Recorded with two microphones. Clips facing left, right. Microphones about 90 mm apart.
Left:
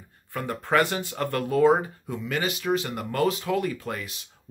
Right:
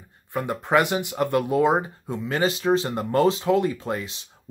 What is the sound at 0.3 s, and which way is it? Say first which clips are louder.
Speech: right 3 dB; 20° right (ahead or behind).